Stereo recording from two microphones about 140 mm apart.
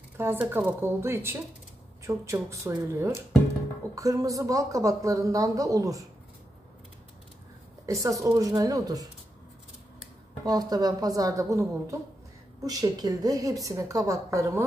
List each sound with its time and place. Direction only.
0.2 s a woman's voice: 15° right (ahead or behind)
7.8 s a woman's voice: 25° right (ahead or behind)
10.4 s a woman's voice: 25° right (ahead or behind)